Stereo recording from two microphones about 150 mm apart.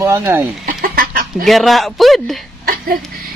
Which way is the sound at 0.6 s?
75° right (ahead or behind).